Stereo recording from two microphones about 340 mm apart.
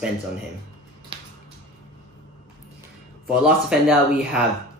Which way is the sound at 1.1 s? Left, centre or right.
Centre.